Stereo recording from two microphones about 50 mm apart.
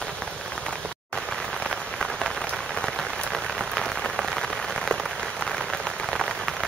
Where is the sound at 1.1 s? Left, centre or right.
Centre.